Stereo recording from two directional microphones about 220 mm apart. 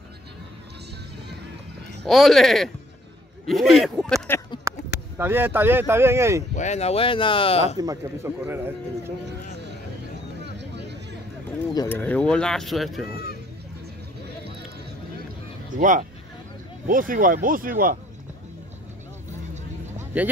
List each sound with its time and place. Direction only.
2.0 s speech: centre (ahead or behind)
4.7 s a sound: 15° right (ahead or behind)
5.1 s speech: 10° right (ahead or behind)
6.5 s speech: 30° left (ahead or behind)
7.7 s speech: 15° right (ahead or behind)
10.6 s vehicle: 50° right (ahead or behind)
11.7 s speech: 15° left (ahead or behind)
15.8 s speech: 35° right (ahead or behind)
20.1 s speech: 5° right (ahead or behind)